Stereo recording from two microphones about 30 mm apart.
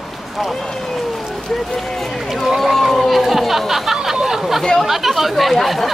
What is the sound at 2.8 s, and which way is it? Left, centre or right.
Chatter, centre.